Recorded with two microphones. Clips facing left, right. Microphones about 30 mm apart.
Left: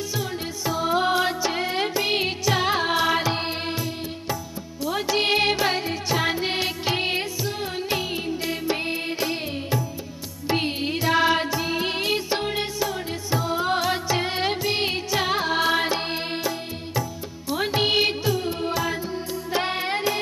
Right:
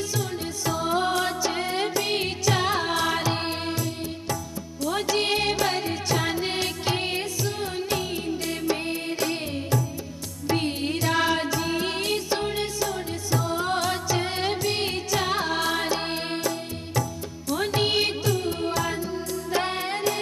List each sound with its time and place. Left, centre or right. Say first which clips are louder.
0.1 s music: left 1 dB; centre
4.8 s music: left 2 dB; centre